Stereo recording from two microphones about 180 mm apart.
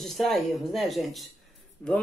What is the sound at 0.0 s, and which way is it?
Speech, centre (ahead or behind).